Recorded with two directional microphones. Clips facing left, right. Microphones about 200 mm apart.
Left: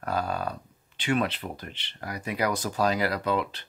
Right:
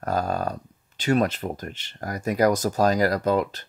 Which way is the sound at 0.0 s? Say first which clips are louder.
Right 4 dB; 40° right (ahead or behind).